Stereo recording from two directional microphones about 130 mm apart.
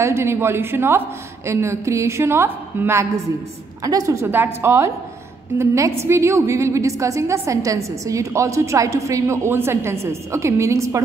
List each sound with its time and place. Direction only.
0.0 s a woman's voice: 20° right (ahead or behind)